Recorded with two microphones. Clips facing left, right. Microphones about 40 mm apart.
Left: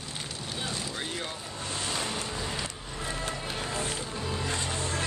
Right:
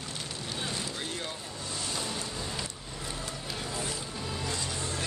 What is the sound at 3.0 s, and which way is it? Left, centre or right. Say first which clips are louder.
Music: left 5 dB; left.